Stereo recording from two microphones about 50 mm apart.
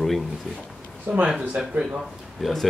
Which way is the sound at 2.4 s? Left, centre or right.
Centre.